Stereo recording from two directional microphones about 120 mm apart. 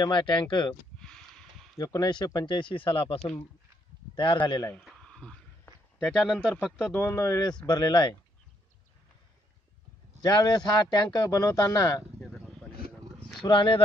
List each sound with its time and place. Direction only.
0.0 s speech: 40° left (ahead or behind)
0.9 s a sound: 5° left (ahead or behind)
1.8 s speech: 30° left (ahead or behind)
4.8 s a sound: 5° left (ahead or behind)
5.9 s speech: centre (ahead or behind)
6.9 s speech: 20° left (ahead or behind); by 8.1 s 40° left (ahead or behind)
10.2 s speech: 35° left (ahead or behind)
12.2 s a sound: 5° left (ahead or behind)
13.4 s speech: 45° left (ahead or behind)